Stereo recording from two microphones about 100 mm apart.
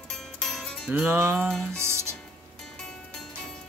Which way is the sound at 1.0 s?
20° right (ahead or behind).